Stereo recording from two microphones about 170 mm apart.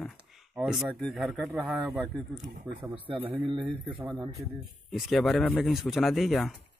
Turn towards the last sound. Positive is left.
turn(degrees=0)  # may be behind; listen again after turning